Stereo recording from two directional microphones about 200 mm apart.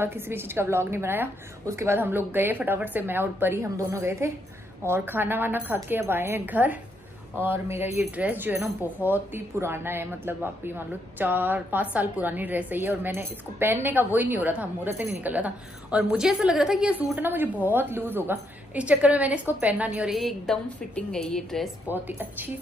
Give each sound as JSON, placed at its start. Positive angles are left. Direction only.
{"t": 0.0, "sound": "a woman's voice", "side_deg": -10}
{"t": 21.8, "sound": "a woman's voice", "side_deg": -10}